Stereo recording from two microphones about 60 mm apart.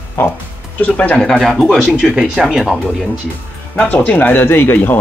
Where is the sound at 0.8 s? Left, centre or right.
Left.